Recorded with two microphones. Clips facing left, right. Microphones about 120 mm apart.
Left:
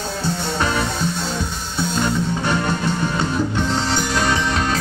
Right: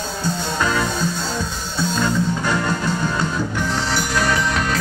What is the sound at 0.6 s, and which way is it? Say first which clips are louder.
Music: right 1 dB; 25° left (ahead or behind).